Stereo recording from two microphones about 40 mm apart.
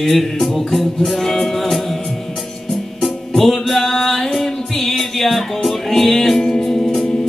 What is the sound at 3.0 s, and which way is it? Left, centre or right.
Music, centre.